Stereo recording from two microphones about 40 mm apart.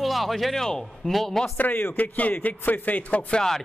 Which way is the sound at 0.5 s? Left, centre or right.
Centre.